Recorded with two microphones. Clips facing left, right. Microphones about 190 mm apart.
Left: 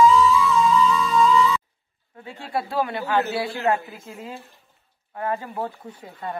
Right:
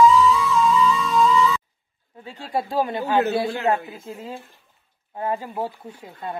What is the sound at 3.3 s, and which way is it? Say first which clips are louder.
Speech: right 4 dB; 50° right (ahead or behind).